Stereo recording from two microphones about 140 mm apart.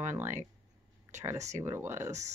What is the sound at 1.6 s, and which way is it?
Speech, 20° right (ahead or behind).